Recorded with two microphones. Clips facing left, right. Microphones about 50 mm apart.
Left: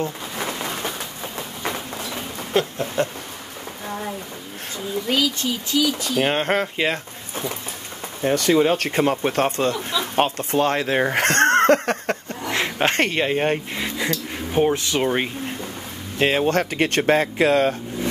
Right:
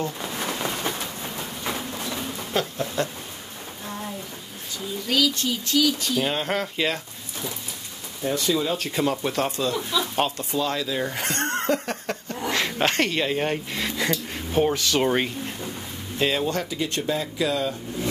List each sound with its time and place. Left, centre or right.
2.5 s speech: left
4.7 s speech: left
6.1 s speech: left
8.4 s speech: left
12.5 s a sound: left
12.9 s speech: left
13.8 s a sound: centre
14.5 s speech: left
16.2 s speech: left